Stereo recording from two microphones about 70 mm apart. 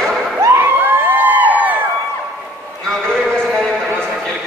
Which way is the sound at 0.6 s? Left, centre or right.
Right.